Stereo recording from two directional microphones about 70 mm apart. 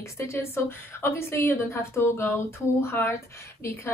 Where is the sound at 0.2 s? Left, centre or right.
Left.